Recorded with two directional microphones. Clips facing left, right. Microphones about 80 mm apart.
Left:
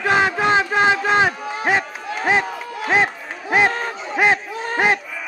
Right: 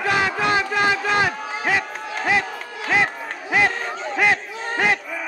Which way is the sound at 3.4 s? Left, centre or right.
Left.